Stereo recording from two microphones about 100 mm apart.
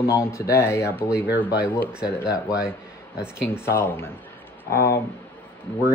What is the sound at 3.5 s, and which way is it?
Speech, 20° left (ahead or behind).